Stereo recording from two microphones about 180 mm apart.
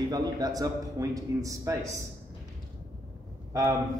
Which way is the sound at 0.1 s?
20° right (ahead or behind).